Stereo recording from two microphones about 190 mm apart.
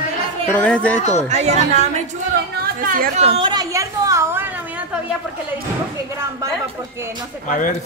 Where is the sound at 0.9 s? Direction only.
40° left (ahead or behind).